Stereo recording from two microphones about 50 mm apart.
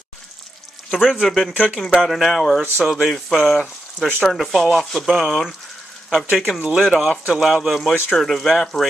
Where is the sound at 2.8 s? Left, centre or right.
Centre.